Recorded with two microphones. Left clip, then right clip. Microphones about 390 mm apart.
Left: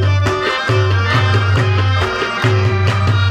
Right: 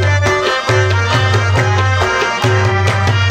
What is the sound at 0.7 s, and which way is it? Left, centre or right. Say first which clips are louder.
Music: right 3 dB; centre.